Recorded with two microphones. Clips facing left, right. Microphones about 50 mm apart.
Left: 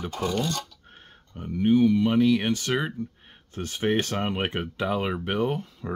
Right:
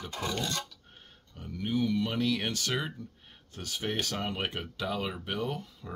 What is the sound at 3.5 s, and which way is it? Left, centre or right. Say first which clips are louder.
Speech: left 9 dB; left.